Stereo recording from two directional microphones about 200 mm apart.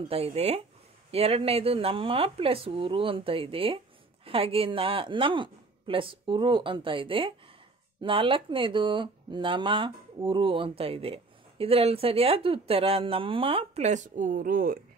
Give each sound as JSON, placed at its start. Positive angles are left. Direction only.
{"t": 0.1, "sound": "speech", "side_deg": -30}